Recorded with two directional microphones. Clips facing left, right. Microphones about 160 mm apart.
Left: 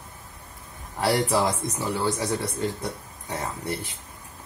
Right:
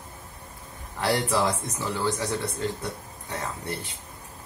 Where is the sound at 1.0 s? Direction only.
10° left (ahead or behind).